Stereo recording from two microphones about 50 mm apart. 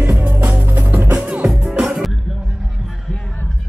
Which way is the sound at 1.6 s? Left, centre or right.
Centre.